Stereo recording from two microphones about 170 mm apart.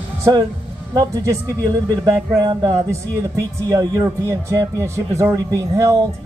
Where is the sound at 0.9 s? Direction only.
20° right (ahead or behind).